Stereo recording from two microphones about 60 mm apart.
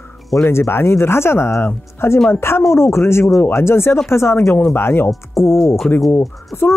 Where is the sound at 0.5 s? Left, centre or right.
Left.